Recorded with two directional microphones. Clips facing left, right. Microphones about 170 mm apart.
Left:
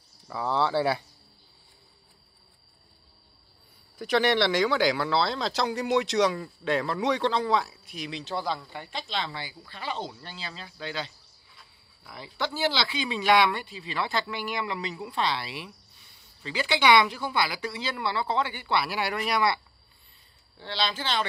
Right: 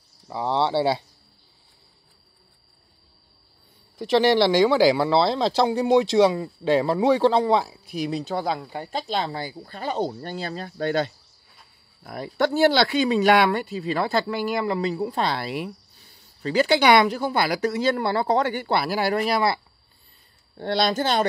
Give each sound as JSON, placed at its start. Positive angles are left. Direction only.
{"t": 0.3, "sound": "speech", "side_deg": -25}
{"t": 4.0, "sound": "speech", "side_deg": -30}
{"t": 20.5, "sound": "speech", "side_deg": -50}